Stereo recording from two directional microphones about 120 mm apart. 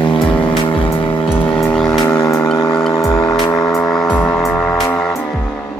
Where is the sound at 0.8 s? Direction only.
45° left (ahead or behind).